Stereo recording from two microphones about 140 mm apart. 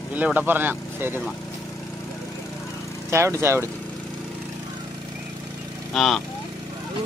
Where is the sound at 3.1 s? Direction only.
20° right (ahead or behind).